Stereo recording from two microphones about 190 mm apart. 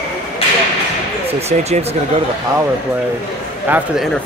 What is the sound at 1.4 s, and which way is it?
Speech, 35° right (ahead or behind).